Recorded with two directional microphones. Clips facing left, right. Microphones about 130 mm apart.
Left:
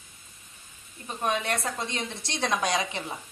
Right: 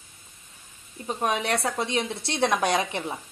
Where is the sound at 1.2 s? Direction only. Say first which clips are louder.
Right 2 dB; 80° right.